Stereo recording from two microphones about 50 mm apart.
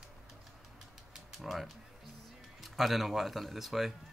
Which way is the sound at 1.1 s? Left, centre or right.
Centre.